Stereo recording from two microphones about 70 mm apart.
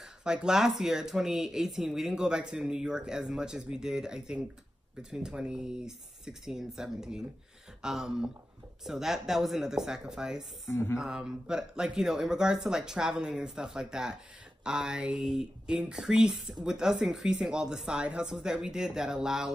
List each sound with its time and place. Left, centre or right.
0.2 s speech: centre
10.7 s speech: left
11.0 s speech: centre